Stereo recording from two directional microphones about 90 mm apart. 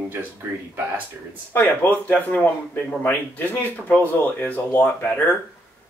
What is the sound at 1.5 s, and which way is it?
Speech, 20° left (ahead or behind).